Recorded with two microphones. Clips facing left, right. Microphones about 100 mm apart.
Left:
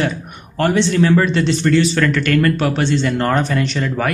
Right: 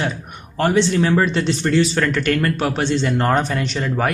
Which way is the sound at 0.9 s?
20° right (ahead or behind).